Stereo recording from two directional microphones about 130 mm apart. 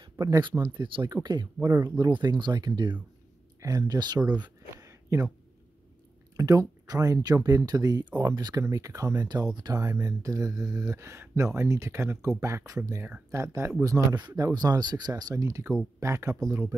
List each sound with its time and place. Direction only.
0.0 s speech: 30° right (ahead or behind)
4.3 s a sound: 30° right (ahead or behind)
6.3 s speech: 25° right (ahead or behind)